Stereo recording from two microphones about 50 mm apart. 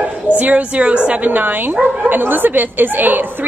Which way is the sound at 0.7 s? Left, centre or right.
Right.